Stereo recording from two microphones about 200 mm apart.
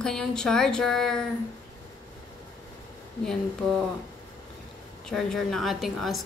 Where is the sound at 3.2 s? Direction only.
Centre (ahead or behind).